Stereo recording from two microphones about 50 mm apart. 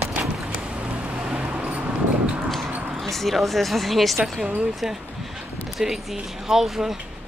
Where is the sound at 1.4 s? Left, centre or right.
Right.